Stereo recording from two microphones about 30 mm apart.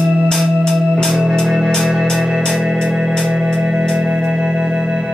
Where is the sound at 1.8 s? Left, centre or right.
Centre.